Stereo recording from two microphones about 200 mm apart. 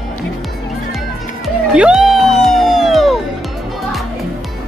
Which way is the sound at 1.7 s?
5° right (ahead or behind).